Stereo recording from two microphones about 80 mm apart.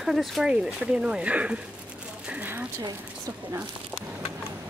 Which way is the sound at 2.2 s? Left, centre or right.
Centre.